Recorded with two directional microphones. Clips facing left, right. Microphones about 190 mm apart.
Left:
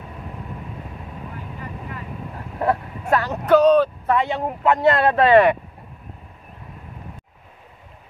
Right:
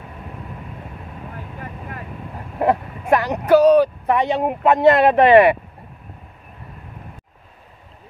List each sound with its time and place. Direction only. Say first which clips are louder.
2.6 s speech: right 3 dB; 15° right (ahead or behind)